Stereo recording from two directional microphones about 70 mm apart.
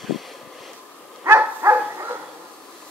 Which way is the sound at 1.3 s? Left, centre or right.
Right.